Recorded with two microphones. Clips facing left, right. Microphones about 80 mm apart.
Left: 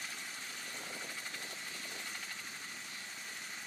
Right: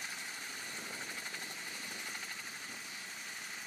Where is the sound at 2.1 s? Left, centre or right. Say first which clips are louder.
Right 1 dB; centre.